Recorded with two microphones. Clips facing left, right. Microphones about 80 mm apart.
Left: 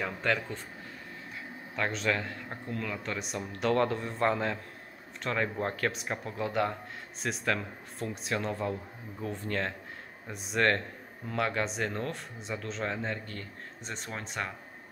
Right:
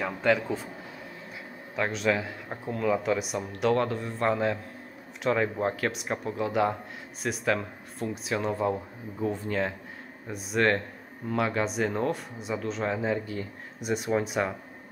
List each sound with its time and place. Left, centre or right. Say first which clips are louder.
0.0 s speech: right 5 dB; centre
1.8 s speech: right 4 dB; centre